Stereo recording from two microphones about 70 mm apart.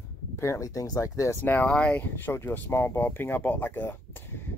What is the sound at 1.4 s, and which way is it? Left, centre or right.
Speech, left.